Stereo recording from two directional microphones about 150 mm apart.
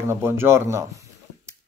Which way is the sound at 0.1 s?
15° right (ahead or behind).